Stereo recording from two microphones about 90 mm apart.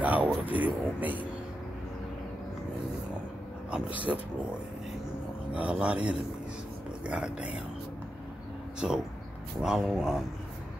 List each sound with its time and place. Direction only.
0.0 s a sound: 15° right (ahead or behind)
0.5 s speech: 15° right (ahead or behind)
3.7 s speech: 15° right (ahead or behind)
5.5 s speech: 15° right (ahead or behind)
8.7 s speech: 5° right (ahead or behind)